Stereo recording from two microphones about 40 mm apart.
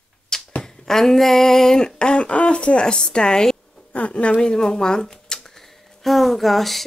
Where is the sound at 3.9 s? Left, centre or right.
Left.